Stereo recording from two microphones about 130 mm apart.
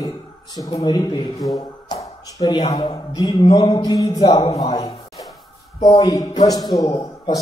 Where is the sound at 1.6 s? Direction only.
30° left (ahead or behind).